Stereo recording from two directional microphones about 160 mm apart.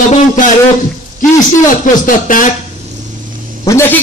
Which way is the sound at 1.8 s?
55° left (ahead or behind).